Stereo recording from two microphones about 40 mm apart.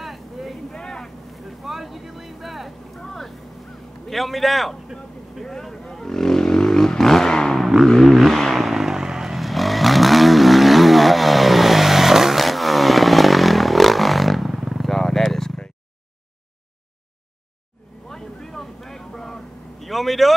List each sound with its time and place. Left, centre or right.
0.0 s vehicle: centre
0.7 s vehicle: centre
1.0 s vehicle: centre
3.0 s vehicle: centre
4.1 s a man's voice: centre
4.9 s vehicle: centre
7.8 s a sound: centre
9.4 s vehicle: centre
18.0 s vehicle: centre
19.8 s vehicle: centre